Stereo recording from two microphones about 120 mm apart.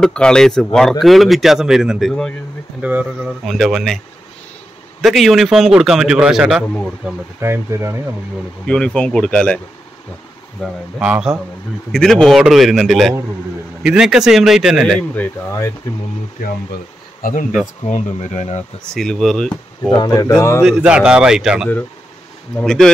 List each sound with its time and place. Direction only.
0.0 s speech: 5° left (ahead or behind)
2.8 s speech: 10° right (ahead or behind)
3.4 s speech: centre (ahead or behind)
5.0 s speech: centre (ahead or behind)
7.3 s speech: 20° right (ahead or behind)
8.6 s speech: 10° left (ahead or behind)
10.6 s speech: 5° right (ahead or behind)
11.9 s speech: 5° left (ahead or behind)
17.8 s speech: 85° left; by 18.6 s 70° left (ahead or behind)
18.9 s speech: 5° left (ahead or behind)
20.1 s speech: 30° left (ahead or behind)
20.6 s speech: 5° right (ahead or behind)